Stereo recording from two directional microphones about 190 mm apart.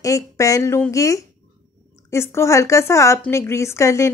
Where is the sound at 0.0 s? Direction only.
15° left (ahead or behind).